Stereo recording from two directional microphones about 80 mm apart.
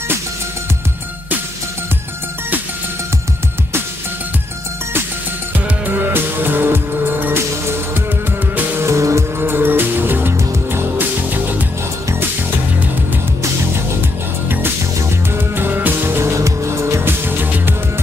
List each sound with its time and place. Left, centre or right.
5.9 s music: right
15.0 s music: right